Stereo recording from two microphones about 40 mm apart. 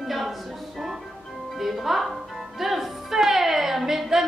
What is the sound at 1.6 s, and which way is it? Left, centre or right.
A woman's voice, centre.